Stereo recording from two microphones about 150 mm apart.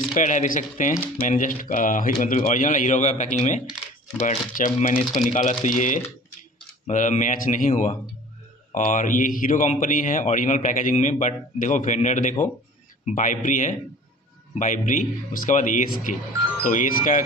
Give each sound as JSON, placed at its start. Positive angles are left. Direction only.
{"t": 0.1, "sound": "a man's voice", "side_deg": 55}